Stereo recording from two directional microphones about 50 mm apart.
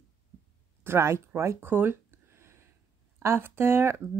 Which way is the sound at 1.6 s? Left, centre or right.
Right.